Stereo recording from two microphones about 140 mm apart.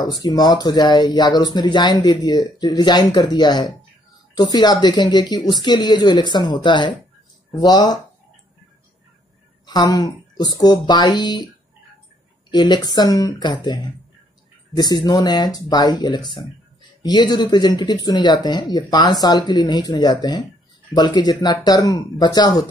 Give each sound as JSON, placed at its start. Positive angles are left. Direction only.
{"t": 0.0, "sound": "speech", "side_deg": 30}
{"t": 9.7, "sound": "a woman's voice", "side_deg": 30}
{"t": 12.4, "sound": "speech", "side_deg": 30}
{"t": 15.0, "sound": "speech", "side_deg": 30}